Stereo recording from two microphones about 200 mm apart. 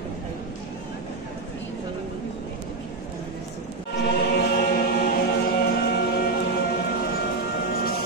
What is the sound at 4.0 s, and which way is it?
Chant, 55° left (ahead or behind).